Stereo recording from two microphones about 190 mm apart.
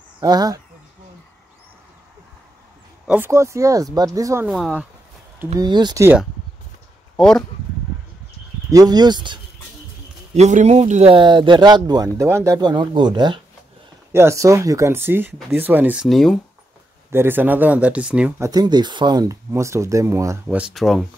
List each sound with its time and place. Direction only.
0.2 s speech: 20° right (ahead or behind)
3.1 s speech: 10° right (ahead or behind)
4.5 s speech: centre (ahead or behind)
5.6 s speech: 20° right (ahead or behind)
7.2 s speech: 5° left (ahead or behind)
8.6 s speech: 20° right (ahead or behind)
10.3 s speech: 35° right (ahead or behind); by 16.3 s centre (ahead or behind)
17.1 s speech: 10° right (ahead or behind)
18.5 s speech: 20° right (ahead or behind)
20.4 s speech: 5° right (ahead or behind)